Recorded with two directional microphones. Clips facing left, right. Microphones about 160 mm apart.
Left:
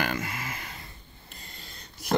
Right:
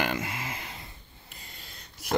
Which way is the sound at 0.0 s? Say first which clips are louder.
Even; 20° right (ahead or behind).